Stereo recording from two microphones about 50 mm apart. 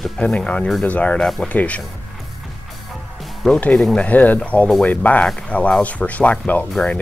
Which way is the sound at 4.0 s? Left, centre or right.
Left.